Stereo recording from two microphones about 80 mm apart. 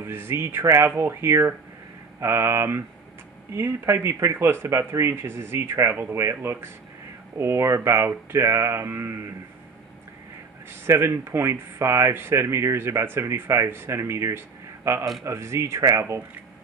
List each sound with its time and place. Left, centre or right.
0.0 s speech: right
10.7 s speech: right